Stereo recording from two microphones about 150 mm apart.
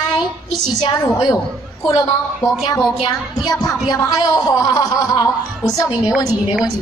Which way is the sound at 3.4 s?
25° left (ahead or behind).